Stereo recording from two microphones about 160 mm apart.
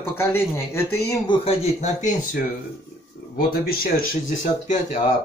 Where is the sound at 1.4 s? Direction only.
45° left (ahead or behind).